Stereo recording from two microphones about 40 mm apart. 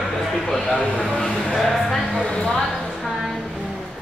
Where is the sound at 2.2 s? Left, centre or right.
Left.